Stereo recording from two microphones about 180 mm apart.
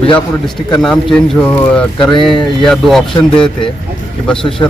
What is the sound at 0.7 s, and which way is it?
Speech, 5° left (ahead or behind).